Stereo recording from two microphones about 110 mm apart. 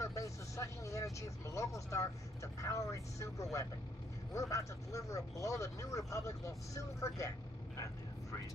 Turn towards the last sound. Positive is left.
turn(degrees=30)  # may be behind; listen again after turning